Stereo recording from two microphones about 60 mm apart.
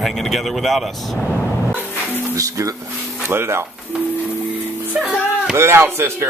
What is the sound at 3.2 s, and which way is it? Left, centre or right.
Speech, right.